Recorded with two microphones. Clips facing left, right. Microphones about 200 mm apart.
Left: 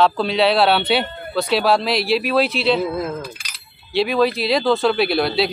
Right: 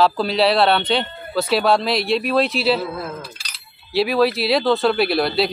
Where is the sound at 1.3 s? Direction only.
Centre (ahead or behind).